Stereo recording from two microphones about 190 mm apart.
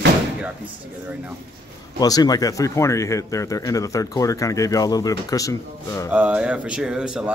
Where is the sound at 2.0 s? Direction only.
20° left (ahead or behind).